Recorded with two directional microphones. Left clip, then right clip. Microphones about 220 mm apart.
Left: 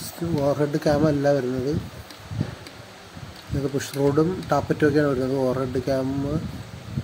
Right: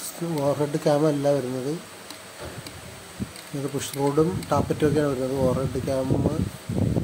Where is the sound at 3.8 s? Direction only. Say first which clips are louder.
Left 1 dB; 5° left (ahead or behind).